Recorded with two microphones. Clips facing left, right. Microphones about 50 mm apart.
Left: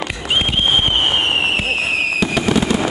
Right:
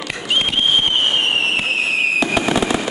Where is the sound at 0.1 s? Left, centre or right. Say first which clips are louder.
Right 1 dB; centre.